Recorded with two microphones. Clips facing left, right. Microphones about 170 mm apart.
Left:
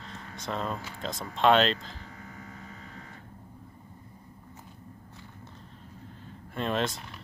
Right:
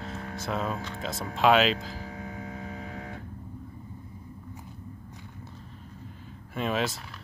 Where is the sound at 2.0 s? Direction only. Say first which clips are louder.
Right 7 dB; 70° right (ahead or behind).